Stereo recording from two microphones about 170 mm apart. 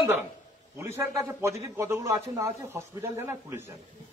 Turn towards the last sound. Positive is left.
turn(degrees=-15)  # may be behind; listen again after turning